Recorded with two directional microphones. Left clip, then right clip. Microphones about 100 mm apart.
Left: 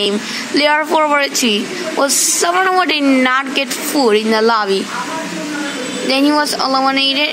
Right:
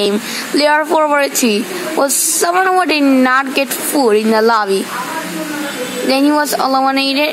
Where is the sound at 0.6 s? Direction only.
5° right (ahead or behind).